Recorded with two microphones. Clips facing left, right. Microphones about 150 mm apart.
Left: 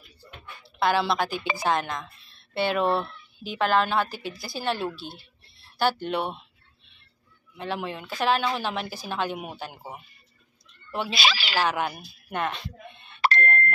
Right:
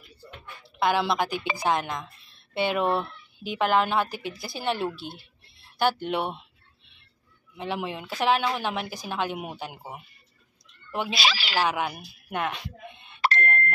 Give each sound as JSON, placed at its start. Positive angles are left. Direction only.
{"t": 0.7, "sound": "speech", "side_deg": -15}
{"t": 7.5, "sound": "a woman's voice", "side_deg": -15}
{"t": 10.7, "sound": "a sound", "side_deg": -15}
{"t": 11.1, "sound": "speech", "side_deg": 60}
{"t": 11.5, "sound": "speech", "side_deg": -10}
{"t": 13.4, "sound": "a sound", "side_deg": -10}